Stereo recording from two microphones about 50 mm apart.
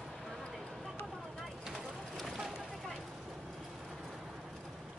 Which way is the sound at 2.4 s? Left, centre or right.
Centre.